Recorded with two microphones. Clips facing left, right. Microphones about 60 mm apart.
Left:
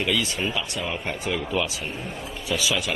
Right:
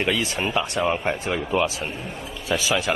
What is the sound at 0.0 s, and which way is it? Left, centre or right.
A man's voice, right.